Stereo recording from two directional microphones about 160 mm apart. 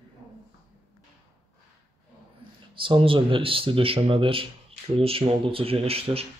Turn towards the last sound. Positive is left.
turn(degrees=-35)  # may be behind; listen again after turning